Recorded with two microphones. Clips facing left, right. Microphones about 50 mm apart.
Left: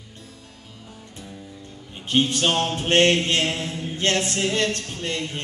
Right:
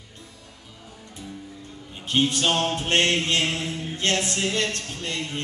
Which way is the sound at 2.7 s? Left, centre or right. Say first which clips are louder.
Left 4 dB; left.